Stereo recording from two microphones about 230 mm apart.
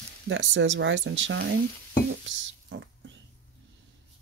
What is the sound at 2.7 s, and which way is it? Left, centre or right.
Speech, right.